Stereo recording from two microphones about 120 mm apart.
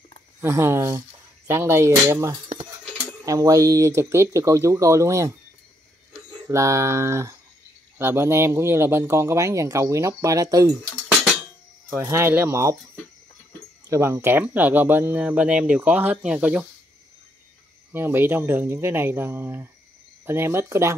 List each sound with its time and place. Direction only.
0.4 s speech: 20° right (ahead or behind)
6.4 s speech: 25° right (ahead or behind)
12.0 s speech: 20° right (ahead or behind)
13.8 s speech: 25° right (ahead or behind)
17.9 s speech: 20° right (ahead or behind)